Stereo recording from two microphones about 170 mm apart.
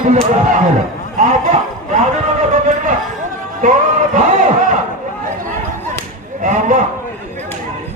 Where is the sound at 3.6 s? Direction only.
50° right (ahead or behind).